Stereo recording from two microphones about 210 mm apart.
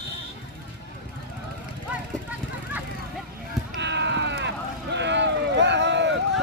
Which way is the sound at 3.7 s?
55° right (ahead or behind).